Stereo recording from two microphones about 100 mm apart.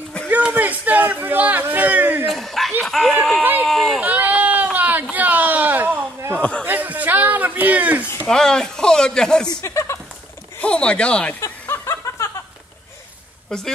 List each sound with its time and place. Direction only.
0.3 s a sound: 15° right (ahead or behind)
2.2 s chuckle: centre (ahead or behind)
2.8 s dog: centre (ahead or behind)
3.6 s run: centre (ahead or behind)
4.0 s a sound: 15° right (ahead or behind)
8.3 s speech: 5° left (ahead or behind)
9.6 s a sound: 30° left (ahead or behind)
10.6 s speech: 10° left (ahead or behind)
11.4 s snicker: 25° left (ahead or behind)